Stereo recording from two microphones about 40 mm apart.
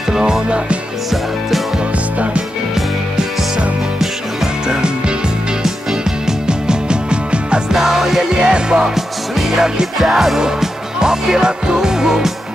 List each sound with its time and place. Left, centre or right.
0.1 s music: centre
4.6 s music: right
5.6 s music: centre
6.4 s music: right
7.7 s music: centre